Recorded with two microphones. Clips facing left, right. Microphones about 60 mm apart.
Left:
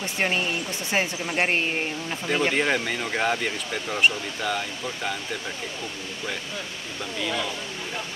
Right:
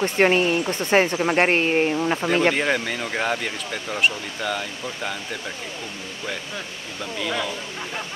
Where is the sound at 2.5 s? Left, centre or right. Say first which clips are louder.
Right 2 dB; centre.